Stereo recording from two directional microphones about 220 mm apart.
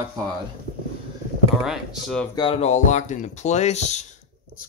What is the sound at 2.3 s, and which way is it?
Speech, 25° left (ahead or behind).